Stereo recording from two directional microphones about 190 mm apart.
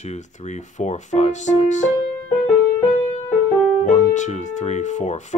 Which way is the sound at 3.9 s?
40° left (ahead or behind).